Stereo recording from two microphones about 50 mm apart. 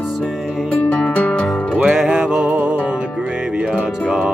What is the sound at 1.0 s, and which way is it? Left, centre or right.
Music, left.